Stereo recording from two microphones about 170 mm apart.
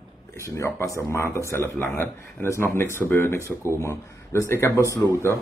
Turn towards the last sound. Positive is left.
turn(degrees=20)  # may be behind; listen again after turning